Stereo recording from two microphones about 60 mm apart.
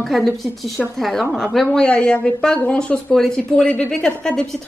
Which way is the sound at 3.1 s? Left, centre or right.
Centre.